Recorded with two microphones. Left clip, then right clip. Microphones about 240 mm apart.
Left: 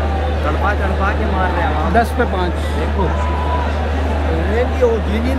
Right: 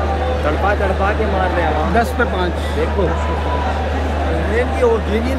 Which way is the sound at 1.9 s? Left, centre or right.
Left.